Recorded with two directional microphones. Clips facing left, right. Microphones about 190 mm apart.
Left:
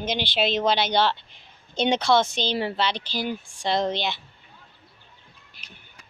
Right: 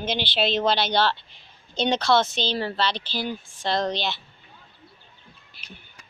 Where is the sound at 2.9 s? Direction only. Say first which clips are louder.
Left 1 dB; 45° left (ahead or behind).